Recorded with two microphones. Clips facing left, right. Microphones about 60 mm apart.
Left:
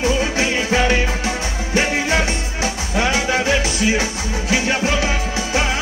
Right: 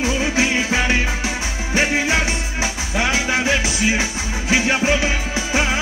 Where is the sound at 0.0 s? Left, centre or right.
Centre.